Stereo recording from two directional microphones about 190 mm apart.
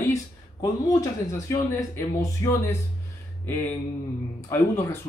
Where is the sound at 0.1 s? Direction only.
20° left (ahead or behind).